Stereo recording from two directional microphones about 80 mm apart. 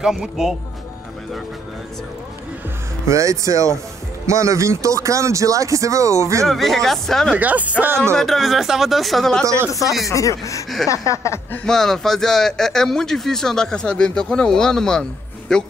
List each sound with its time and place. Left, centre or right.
0.0 s speech: centre
3.1 s speech: right
6.4 s speech: centre
7.3 s speech: centre
8.0 s speech: centre
9.7 s speech: left
11.6 s a man's voice: centre